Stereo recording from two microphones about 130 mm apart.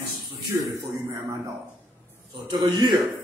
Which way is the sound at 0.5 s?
20° right (ahead or behind).